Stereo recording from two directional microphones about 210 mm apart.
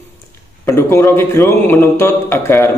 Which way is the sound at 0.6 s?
15° left (ahead or behind).